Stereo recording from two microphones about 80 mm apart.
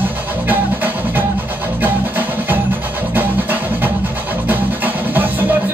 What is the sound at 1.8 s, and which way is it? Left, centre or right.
Music, right.